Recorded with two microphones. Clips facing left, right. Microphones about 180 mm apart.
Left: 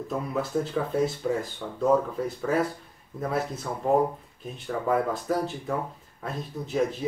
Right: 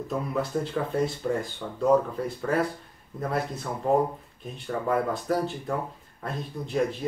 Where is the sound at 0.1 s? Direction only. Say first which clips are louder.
Even; centre (ahead or behind).